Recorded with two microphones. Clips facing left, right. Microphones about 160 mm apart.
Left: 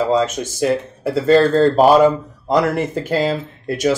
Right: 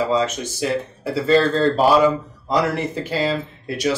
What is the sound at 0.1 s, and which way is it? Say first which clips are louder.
Speech: left 3 dB; 50° left (ahead or behind).